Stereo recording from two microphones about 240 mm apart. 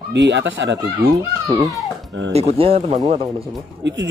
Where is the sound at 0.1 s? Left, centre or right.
Right.